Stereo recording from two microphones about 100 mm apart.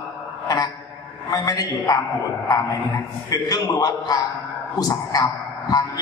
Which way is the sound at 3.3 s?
35° left (ahead or behind).